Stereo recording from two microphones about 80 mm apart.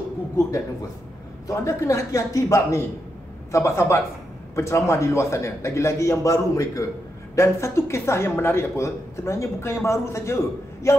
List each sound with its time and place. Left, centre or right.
1.5 s speech: left